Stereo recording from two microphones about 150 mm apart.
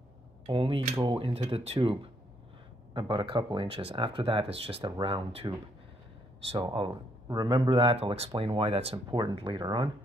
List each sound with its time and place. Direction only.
0.5 s speech: 35° right (ahead or behind)
6.5 s speech: 40° right (ahead or behind)